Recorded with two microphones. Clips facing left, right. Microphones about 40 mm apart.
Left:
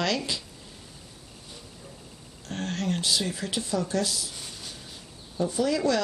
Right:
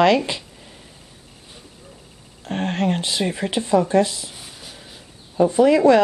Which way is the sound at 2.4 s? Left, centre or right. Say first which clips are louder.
Right 8 dB; right.